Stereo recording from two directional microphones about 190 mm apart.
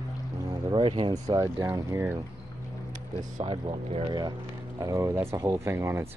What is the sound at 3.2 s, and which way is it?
Speech, 30° right (ahead or behind).